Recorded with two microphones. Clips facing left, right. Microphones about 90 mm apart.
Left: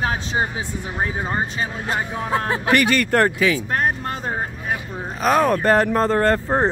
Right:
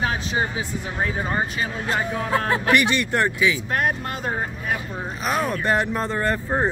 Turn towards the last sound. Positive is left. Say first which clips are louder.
# left 5 dB
turn(degrees=35)  # may be behind; listen again after turning